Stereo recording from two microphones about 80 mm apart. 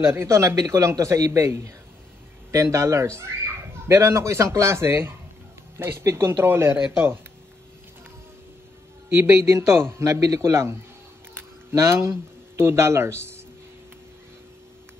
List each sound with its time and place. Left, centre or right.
0.0 s a man's voice: right
9.1 s a man's voice: right